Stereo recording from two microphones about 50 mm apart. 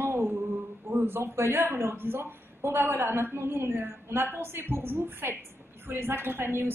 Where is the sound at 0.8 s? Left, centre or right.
Right.